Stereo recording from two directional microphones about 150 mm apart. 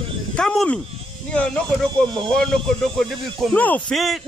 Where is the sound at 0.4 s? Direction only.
5° left (ahead or behind).